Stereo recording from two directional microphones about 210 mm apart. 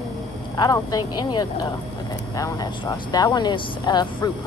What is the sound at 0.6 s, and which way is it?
Speech, 20° left (ahead or behind).